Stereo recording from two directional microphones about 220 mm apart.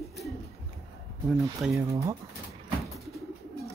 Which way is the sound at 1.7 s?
15° right (ahead or behind).